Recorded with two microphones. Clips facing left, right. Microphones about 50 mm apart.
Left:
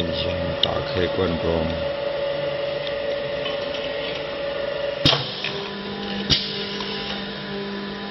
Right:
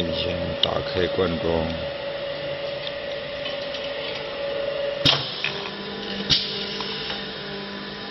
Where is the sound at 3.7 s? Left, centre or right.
Left.